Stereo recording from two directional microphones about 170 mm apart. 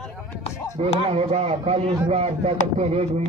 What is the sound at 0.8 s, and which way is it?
A man's voice, 35° right (ahead or behind).